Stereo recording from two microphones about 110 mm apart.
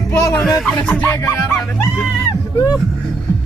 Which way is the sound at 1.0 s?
25° left (ahead or behind).